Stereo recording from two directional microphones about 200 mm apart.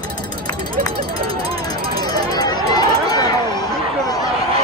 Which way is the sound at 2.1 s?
20° left (ahead or behind).